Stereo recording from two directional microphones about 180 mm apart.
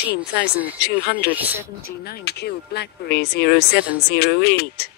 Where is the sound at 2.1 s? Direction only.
65° left (ahead or behind).